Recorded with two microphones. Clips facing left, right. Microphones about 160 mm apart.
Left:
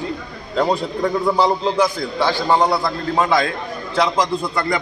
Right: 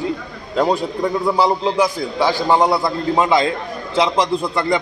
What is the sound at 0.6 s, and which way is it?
A man's voice, 5° right (ahead or behind).